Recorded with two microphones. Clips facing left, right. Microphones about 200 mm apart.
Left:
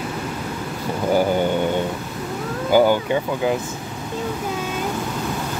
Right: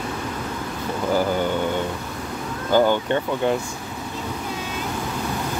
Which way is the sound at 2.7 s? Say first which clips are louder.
Left 2 dB; 10° left (ahead or behind).